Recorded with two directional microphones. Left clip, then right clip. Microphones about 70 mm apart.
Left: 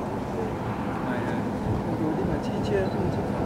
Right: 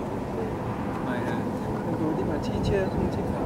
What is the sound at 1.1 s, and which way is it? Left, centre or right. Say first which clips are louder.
Vehicle: right 1 dB; centre.